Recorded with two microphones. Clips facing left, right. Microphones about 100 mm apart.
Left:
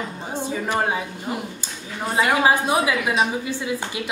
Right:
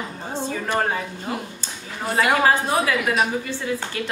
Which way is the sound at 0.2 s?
15° left (ahead or behind).